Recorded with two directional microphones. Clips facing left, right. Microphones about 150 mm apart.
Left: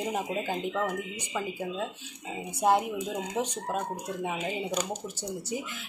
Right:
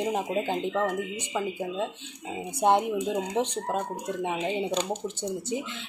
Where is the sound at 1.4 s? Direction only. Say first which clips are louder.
Right 3 dB; 10° right (ahead or behind).